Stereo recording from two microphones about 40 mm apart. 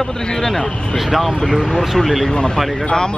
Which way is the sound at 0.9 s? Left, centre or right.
Centre.